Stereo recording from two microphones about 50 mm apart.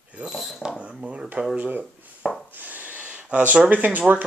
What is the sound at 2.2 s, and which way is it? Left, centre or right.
Chopping, centre.